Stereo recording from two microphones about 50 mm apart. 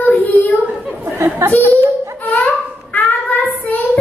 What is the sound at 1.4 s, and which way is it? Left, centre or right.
Speech, right.